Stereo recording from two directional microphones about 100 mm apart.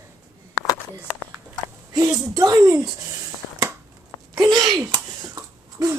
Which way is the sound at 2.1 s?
35° right (ahead or behind).